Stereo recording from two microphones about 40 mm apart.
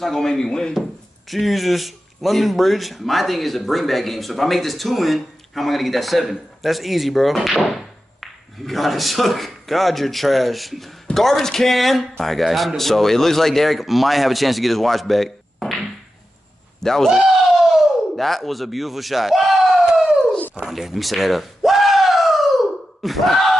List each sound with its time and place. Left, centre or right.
0.0 s speech: centre
0.3 s speech: centre
1.3 s speech: centre
17.1 s a sound: centre
18.1 s a man's voice: centre
20.6 s a sound: centre
23.0 s speech: centre